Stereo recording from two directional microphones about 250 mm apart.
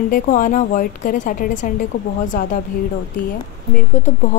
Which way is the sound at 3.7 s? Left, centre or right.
Left.